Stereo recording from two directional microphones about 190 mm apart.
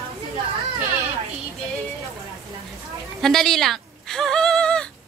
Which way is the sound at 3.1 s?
Centre (ahead or behind).